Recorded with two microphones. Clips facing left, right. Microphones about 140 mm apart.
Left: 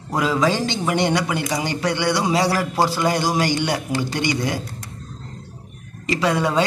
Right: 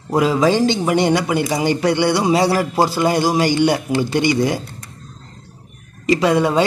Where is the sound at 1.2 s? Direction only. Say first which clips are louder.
Right 5 dB; 30° right (ahead or behind).